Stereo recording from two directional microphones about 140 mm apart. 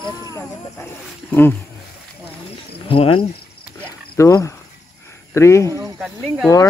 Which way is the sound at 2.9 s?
40° left (ahead or behind).